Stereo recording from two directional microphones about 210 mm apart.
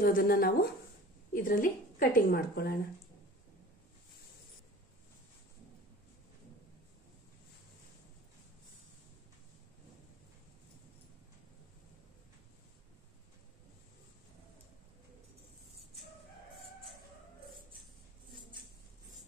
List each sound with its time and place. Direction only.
0.0 s speech: 45° left (ahead or behind)